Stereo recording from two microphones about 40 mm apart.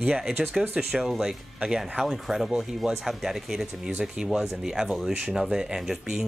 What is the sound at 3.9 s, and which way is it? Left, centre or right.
Speech, right.